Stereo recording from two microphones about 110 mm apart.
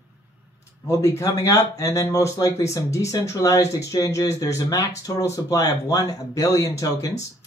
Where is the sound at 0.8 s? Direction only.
30° left (ahead or behind).